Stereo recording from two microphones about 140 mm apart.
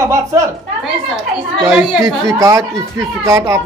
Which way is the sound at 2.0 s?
25° right (ahead or behind).